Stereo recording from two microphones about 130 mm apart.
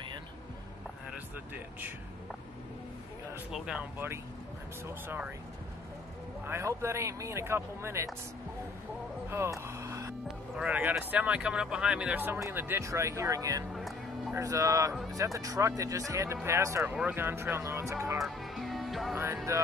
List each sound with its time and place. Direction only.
1.1 s speech: 15° right (ahead or behind)
3.5 s speech: 5° right (ahead or behind)
4.8 s speech: 15° right (ahead or behind)
6.4 s speech: 20° right (ahead or behind)
9.3 s music: 20° right (ahead or behind)
10.2 s speech: 5° right (ahead or behind); by 13.7 s 25° right (ahead or behind)
13.7 s music: centre (ahead or behind)
14.3 s speech: 25° right (ahead or behind)
18.2 s music: centre (ahead or behind)
19.5 s speech: 20° right (ahead or behind)